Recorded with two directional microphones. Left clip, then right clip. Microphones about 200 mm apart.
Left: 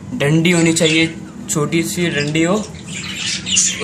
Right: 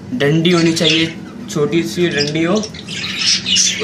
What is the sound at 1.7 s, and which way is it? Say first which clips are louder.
Speech: right 2 dB; 25° left (ahead or behind).